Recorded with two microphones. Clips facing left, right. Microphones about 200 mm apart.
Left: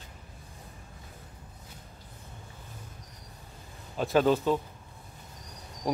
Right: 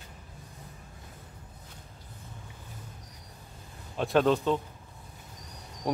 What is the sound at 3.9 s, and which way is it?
Speech, centre (ahead or behind).